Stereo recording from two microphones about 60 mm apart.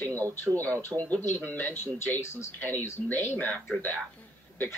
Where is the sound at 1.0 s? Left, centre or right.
Left.